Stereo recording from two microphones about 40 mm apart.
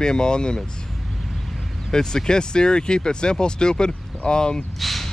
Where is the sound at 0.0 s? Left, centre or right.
Centre.